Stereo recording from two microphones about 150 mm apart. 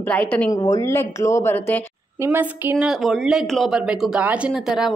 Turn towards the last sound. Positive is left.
turn(degrees=-5)  # may be behind; listen again after turning